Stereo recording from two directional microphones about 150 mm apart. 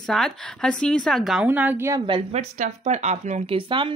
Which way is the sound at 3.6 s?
35° right (ahead or behind).